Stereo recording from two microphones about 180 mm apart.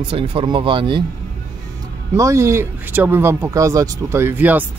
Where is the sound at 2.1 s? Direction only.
15° right (ahead or behind).